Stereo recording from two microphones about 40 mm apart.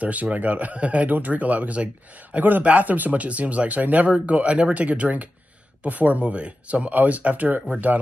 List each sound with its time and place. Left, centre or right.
0.0 s speech: right
2.3 s speech: right